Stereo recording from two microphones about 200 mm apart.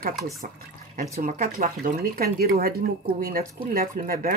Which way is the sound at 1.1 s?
40° right (ahead or behind).